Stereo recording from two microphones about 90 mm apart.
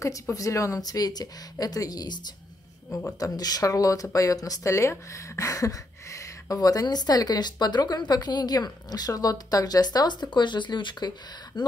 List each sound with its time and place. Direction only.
0.0 s speech: 40° left (ahead or behind); by 11.6 s 55° left (ahead or behind)